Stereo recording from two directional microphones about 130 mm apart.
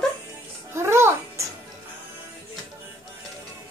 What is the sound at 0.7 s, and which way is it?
Speech, 20° right (ahead or behind).